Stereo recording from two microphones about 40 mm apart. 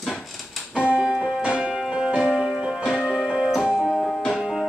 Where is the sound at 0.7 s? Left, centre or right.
Right.